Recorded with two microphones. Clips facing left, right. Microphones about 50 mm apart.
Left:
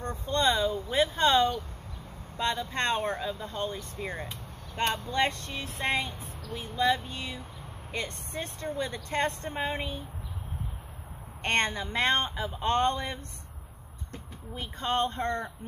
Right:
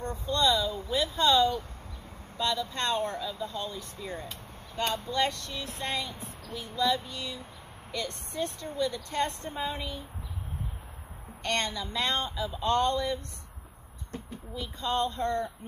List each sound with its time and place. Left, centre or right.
0.3 s a sound: left
0.9 s speech: left
11.4 s speech: left
14.5 s speech: left